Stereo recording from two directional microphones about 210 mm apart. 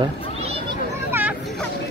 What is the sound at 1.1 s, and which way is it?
Vehicle, 10° right (ahead or behind).